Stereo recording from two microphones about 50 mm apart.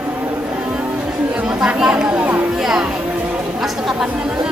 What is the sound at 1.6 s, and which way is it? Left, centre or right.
Speech, centre.